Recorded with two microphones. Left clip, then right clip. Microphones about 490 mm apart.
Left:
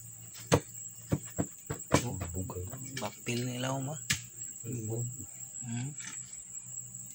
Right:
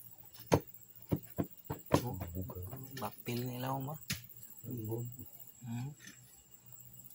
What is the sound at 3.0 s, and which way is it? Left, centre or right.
Speech, right.